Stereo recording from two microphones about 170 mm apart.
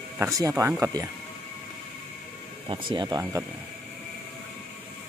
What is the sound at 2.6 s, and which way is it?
Speech, 25° right (ahead or behind).